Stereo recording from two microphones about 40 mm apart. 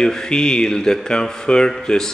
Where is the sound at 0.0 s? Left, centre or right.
Centre.